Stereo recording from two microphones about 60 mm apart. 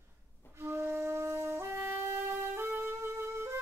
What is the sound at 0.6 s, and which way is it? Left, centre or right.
Music, right.